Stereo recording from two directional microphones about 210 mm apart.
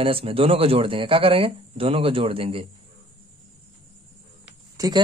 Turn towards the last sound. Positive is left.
turn(degrees=-15)  # may be behind; listen again after turning